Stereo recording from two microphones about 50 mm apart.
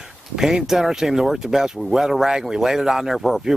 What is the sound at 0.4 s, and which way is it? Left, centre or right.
Speech, centre.